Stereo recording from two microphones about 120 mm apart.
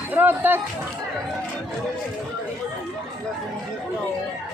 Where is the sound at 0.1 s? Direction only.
15° right (ahead or behind).